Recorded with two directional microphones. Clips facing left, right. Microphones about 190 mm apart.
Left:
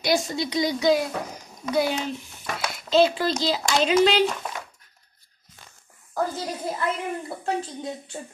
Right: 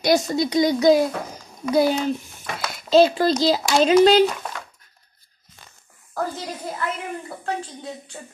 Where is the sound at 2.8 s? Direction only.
40° right (ahead or behind).